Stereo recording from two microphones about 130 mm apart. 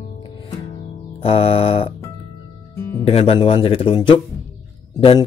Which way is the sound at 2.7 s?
20° left (ahead or behind).